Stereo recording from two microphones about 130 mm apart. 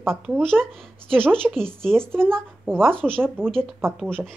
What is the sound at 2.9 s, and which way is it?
Speech, 5° left (ahead or behind).